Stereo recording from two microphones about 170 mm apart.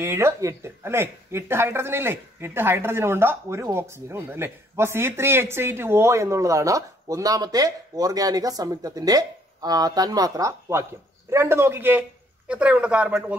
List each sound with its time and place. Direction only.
0.0 s speech: 15° right (ahead or behind)